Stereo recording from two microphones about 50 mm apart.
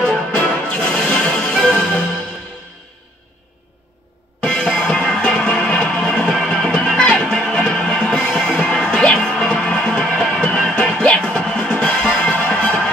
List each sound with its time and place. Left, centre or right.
0.0 s music: centre
4.4 s music: centre